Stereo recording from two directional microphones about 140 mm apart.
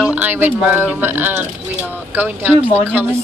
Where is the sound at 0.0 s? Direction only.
10° right (ahead or behind).